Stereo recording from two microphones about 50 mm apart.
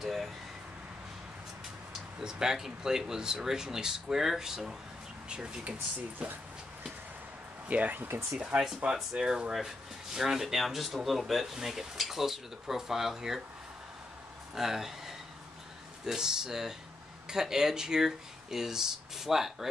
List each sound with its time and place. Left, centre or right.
0.0 s a sound: centre
2.1 s speech: centre
7.6 s speech: right
8.5 s speech: centre
14.5 s speech: centre